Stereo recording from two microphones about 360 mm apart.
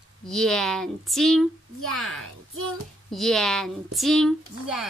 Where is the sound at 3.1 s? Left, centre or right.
Centre.